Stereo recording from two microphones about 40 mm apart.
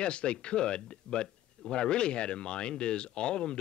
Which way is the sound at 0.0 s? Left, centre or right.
Left.